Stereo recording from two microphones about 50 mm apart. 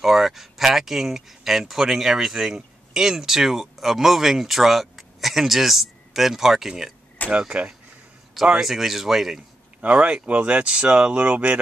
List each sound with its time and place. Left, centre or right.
0.0 s speech: centre
7.2 s speech: right
8.5 s speech: centre
9.8 s speech: right